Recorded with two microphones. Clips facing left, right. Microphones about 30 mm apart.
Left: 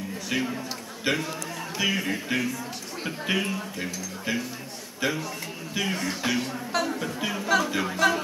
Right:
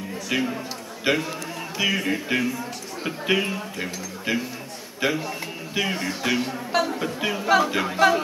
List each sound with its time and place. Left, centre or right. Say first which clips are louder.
0.3 s a man's voice: right 3 dB; centre